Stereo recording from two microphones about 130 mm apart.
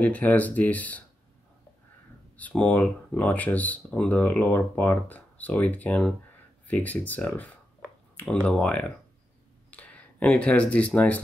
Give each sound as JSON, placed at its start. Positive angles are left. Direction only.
{"t": 0.0, "sound": "speech", "side_deg": 10}
{"t": 2.3, "sound": "speech", "side_deg": 10}